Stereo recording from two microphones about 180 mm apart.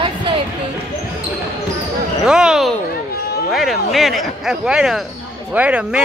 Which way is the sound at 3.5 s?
Centre (ahead or behind).